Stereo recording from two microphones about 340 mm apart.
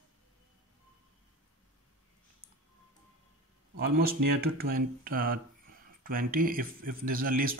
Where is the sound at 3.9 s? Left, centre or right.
Right.